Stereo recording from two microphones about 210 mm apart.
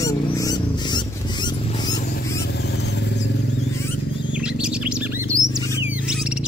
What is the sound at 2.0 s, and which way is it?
Vehicle, 50° left (ahead or behind).